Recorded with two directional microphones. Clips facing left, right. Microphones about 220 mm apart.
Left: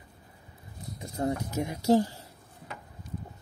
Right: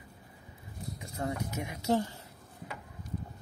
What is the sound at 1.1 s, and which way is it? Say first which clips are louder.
Speech: left 6 dB; 35° left (ahead or behind).